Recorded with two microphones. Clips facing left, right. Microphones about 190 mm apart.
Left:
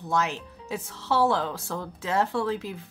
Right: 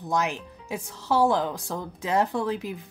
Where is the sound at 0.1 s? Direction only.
15° right (ahead or behind).